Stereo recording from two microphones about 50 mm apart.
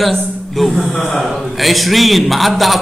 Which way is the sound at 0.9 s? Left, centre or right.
Left.